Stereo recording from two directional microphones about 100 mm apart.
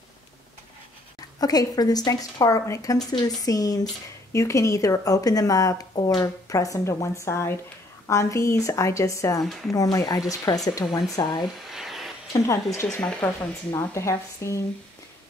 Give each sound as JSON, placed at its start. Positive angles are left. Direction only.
{"t": 1.4, "sound": "speech", "side_deg": 40}
{"t": 9.4, "sound": "speech", "side_deg": 0}
{"t": 9.7, "sound": "speech", "side_deg": 35}
{"t": 11.4, "sound": "a sound", "side_deg": 0}
{"t": 12.3, "sound": "speech", "side_deg": 30}
{"t": 12.8, "sound": "speech", "side_deg": 10}
{"t": 13.7, "sound": "a woman's voice", "side_deg": 30}